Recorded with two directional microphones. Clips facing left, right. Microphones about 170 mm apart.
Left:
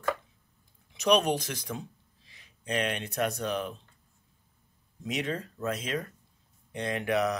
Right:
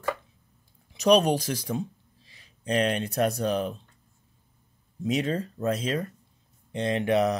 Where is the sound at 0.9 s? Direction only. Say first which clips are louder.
Right 4 dB; 35° right (ahead or behind).